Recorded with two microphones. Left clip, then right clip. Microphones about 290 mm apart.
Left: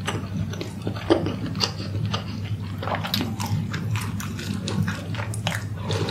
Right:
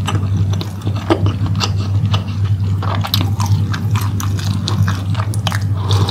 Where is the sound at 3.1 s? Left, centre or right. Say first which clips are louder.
Right 7 dB; centre.